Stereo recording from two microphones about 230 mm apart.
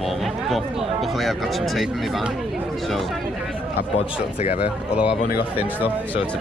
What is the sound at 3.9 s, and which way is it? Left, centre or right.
Speech, left.